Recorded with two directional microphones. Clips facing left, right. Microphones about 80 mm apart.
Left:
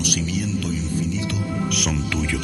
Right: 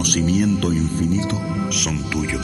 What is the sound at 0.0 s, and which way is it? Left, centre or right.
Speech, right.